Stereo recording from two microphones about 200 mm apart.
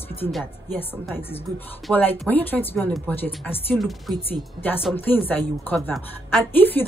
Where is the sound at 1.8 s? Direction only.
10° left (ahead or behind).